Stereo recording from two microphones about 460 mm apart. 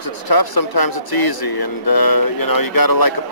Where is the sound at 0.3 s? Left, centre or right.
Left.